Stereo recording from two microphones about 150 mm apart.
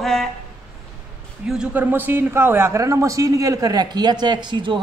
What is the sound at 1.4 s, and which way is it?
A man's voice, 5° right (ahead or behind).